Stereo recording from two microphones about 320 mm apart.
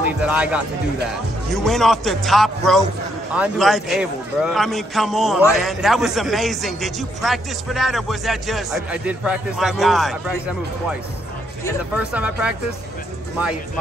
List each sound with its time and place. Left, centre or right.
0.2 s a man's voice: centre
11.9 s a man's voice: centre